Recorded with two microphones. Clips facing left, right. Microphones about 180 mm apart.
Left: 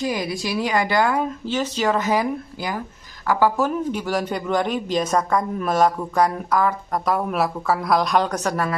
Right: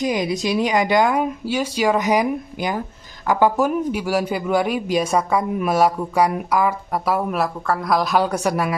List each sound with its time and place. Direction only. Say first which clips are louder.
0.0 s a man's voice: right 4 dB; 20° right (ahead or behind)